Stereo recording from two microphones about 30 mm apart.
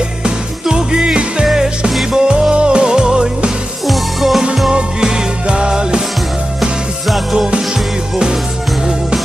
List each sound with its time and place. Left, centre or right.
0.2 s music: right
1.4 s music: right
3.8 s music: centre
4.6 s music: right